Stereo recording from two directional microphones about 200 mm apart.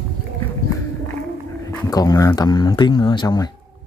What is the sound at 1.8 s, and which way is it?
Speech, 20° left (ahead or behind).